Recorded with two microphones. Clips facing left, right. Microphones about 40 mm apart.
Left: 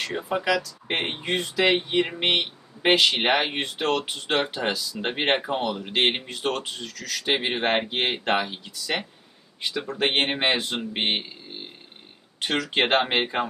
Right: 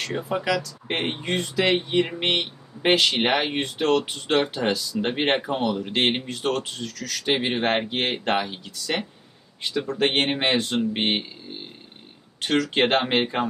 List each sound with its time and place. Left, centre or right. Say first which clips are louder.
0.0 s speech: even; centre